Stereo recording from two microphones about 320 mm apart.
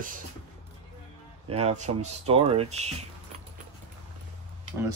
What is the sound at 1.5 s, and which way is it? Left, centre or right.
Speech, centre.